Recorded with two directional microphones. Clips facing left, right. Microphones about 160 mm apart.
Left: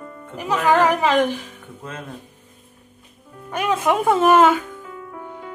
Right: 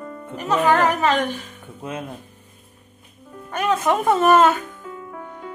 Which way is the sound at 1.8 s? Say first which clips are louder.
Right 4 dB; 15° right (ahead or behind).